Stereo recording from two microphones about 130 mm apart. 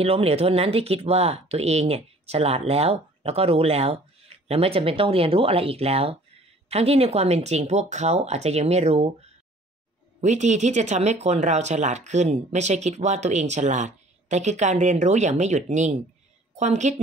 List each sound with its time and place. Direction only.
0.0 s speech: 50° right (ahead or behind)